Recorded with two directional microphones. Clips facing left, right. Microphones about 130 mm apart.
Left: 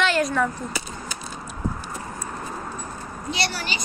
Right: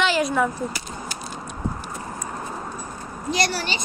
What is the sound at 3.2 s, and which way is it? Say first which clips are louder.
Speech: right 4 dB; 40° right (ahead or behind).